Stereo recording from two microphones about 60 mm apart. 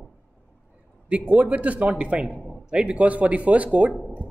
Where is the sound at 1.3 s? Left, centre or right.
Right.